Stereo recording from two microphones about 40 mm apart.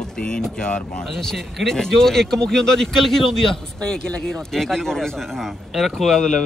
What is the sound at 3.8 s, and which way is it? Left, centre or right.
Speech, centre.